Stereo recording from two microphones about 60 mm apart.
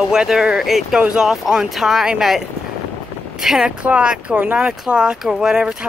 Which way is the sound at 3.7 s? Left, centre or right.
Centre.